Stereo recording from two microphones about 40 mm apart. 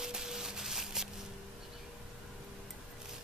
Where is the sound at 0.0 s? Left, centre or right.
Centre.